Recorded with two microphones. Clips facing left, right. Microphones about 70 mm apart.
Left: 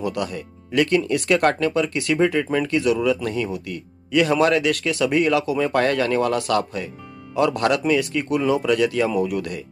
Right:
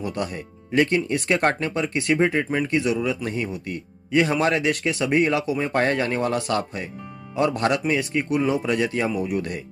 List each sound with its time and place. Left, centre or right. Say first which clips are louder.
0.1 s speech: left 2 dB; right